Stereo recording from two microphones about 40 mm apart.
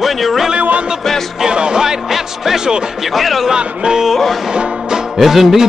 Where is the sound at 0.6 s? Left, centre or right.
Right.